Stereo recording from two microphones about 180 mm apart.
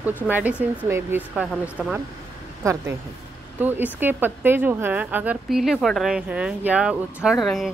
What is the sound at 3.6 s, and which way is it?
A woman's voice, 10° right (ahead or behind).